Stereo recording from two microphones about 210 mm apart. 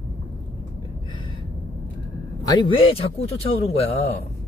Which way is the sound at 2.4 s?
20° left (ahead or behind).